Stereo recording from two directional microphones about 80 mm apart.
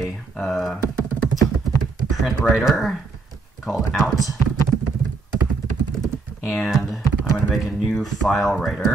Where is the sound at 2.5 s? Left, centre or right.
Centre.